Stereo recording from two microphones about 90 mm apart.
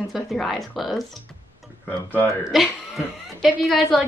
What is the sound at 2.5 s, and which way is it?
Speech, centre (ahead or behind).